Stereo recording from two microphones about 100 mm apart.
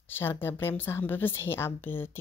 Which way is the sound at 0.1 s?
20° left (ahead or behind).